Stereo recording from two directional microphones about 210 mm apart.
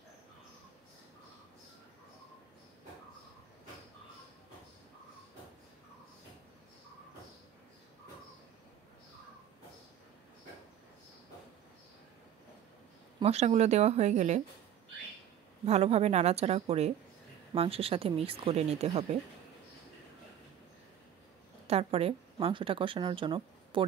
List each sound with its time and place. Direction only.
13.2 s a woman's voice: 30° right (ahead or behind)
15.6 s a woman's voice: 30° right (ahead or behind)
21.6 s a woman's voice: 30° right (ahead or behind)